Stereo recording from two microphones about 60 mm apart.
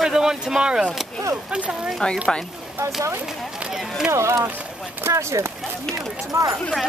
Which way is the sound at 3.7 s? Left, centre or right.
Centre.